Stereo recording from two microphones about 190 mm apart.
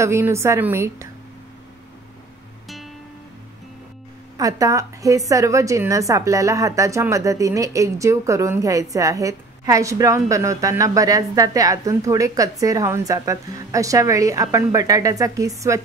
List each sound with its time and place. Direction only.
0.0 s a woman's voice: 15° right (ahead or behind)
4.4 s a woman's voice: 20° right (ahead or behind)